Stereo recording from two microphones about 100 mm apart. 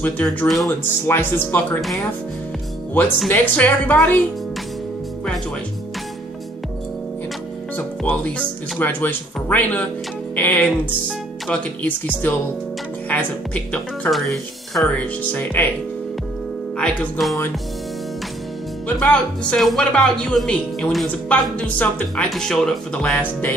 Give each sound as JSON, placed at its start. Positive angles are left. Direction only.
{"t": 0.0, "sound": "speech", "side_deg": 15}
{"t": 3.3, "sound": "speech", "side_deg": 15}
{"t": 7.7, "sound": "speech", "side_deg": 15}
{"t": 14.1, "sound": "speech", "side_deg": 0}
{"t": 15.0, "sound": "speech", "side_deg": 20}
{"t": 16.7, "sound": "speech", "side_deg": 10}
{"t": 18.9, "sound": "speech", "side_deg": 10}
{"t": 22.3, "sound": "speech", "side_deg": 5}